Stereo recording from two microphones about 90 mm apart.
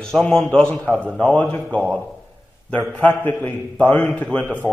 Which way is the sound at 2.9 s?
20° left (ahead or behind).